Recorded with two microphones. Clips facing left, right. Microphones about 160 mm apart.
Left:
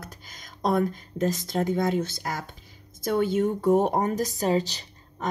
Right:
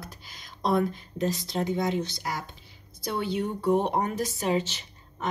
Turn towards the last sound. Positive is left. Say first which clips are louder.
# left 1 dB
turn(degrees=40)  # may be behind; listen again after turning